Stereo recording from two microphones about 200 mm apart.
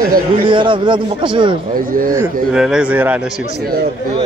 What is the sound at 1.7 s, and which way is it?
Speech, 45° right (ahead or behind).